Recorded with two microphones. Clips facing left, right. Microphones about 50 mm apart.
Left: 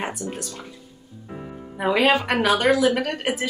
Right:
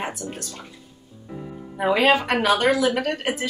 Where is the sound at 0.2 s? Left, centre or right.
Centre.